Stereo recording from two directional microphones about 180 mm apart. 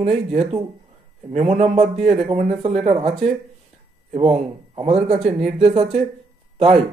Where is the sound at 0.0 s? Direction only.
35° right (ahead or behind).